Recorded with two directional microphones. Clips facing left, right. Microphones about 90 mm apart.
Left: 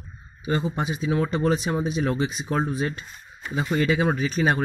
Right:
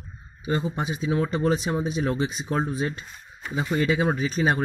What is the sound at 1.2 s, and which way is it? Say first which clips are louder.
Speech: left 1 dB; 15° right (ahead or behind).